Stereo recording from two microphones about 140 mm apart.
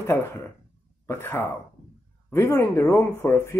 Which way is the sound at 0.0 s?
20° left (ahead or behind).